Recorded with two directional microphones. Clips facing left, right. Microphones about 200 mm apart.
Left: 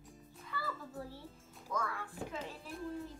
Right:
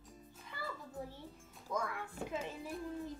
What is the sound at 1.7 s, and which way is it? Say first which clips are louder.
Speech: even; 20° right (ahead or behind).